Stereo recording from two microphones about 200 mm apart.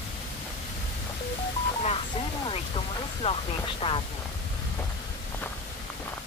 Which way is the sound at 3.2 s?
30° left (ahead or behind).